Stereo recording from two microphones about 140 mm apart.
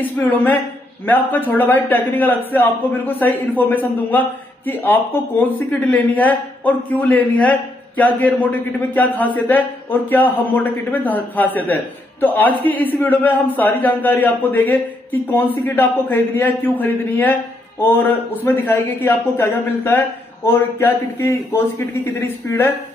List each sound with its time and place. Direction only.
0.0 s a man's voice: 10° left (ahead or behind)